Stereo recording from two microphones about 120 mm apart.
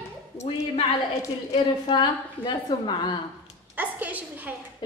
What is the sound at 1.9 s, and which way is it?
A woman's voice, 40° left (ahead or behind).